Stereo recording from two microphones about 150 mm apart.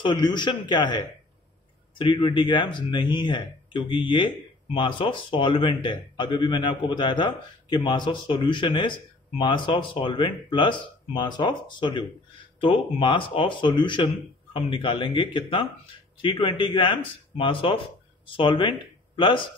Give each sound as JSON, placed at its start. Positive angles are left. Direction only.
{"t": 0.0, "sound": "a man's voice", "side_deg": 30}